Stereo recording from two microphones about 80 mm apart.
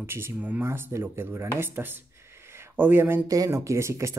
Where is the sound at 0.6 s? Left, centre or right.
Right.